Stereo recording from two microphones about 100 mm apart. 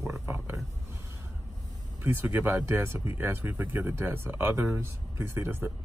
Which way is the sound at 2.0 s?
20° right (ahead or behind).